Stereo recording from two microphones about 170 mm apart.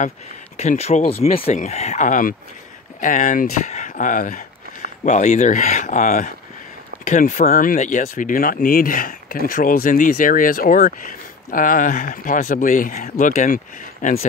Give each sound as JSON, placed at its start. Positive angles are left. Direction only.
{"t": 0.6, "sound": "speech", "side_deg": 40}